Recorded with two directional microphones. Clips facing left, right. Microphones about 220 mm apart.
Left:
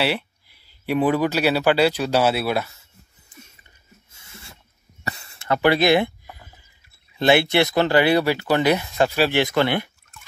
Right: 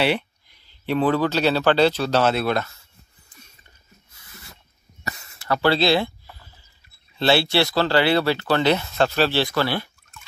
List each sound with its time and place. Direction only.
0.0 s speech: 5° left (ahead or behind)
4.1 s a sound: 25° left (ahead or behind)
7.2 s speech: 20° left (ahead or behind)